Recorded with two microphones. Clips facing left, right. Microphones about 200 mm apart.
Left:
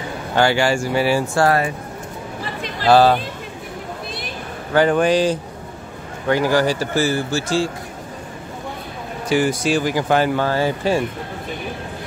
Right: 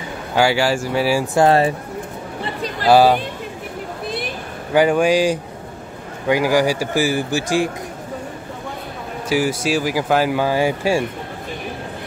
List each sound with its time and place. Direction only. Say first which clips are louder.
0.3 s speech: even; 5° right (ahead or behind)
1.2 s speech: right 3 dB; 20° right (ahead or behind)
2.9 s speech: right 1 dB; 10° right (ahead or behind)
4.7 s speech: right 1 dB; 10° right (ahead or behind)
9.3 s speech: left 1 dB; 5° right (ahead or behind)